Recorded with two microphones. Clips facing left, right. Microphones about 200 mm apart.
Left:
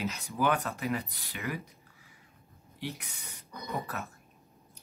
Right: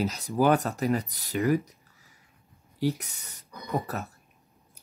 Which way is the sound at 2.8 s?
40° right (ahead or behind).